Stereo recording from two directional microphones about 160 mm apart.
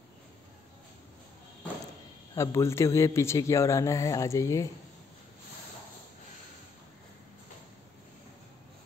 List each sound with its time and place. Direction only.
2.3 s speech: 20° left (ahead or behind)